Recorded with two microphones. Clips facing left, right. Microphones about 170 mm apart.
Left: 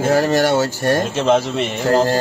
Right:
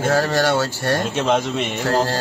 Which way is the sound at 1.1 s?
Centre (ahead or behind).